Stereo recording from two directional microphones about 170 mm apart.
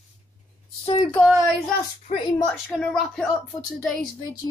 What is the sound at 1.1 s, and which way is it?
Speech, 5° right (ahead or behind).